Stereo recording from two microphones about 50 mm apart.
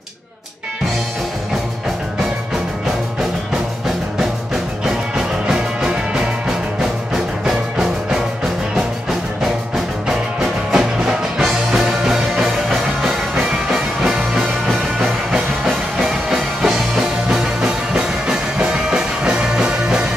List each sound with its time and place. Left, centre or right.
4.8 s music: centre
7.4 s music: centre
10.0 s music: centre